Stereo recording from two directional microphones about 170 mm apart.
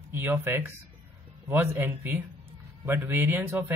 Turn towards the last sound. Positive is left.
turn(degrees=-15)  # may be behind; listen again after turning